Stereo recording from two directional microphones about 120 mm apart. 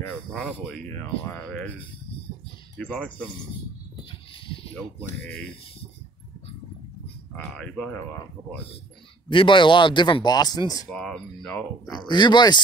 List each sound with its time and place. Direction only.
0.1 s speech: 10° left (ahead or behind)
2.9 s speech: 5° left (ahead or behind)
9.3 s speech: 45° left (ahead or behind)
10.9 s speech: 5° left (ahead or behind)
11.9 s speech: 40° left (ahead or behind)